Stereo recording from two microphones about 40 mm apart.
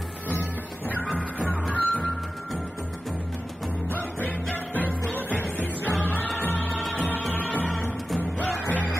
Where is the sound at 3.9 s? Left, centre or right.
Left.